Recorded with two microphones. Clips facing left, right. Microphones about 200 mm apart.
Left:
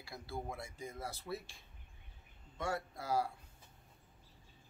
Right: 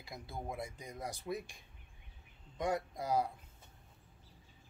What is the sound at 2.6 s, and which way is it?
Speech, 20° right (ahead or behind).